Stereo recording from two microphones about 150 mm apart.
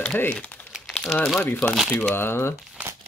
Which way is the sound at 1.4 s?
15° left (ahead or behind).